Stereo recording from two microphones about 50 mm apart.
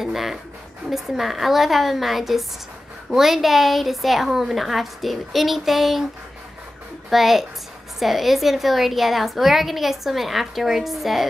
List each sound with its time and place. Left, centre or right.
0.0 s a woman's voice: centre
7.1 s a woman's voice: centre